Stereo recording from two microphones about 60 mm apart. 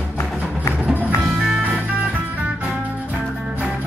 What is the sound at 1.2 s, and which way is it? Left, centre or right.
Music, centre.